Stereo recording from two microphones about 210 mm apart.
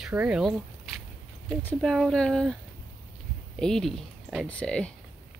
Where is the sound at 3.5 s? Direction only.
Centre (ahead or behind).